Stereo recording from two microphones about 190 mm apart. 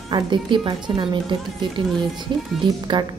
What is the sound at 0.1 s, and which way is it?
Speech, 25° right (ahead or behind).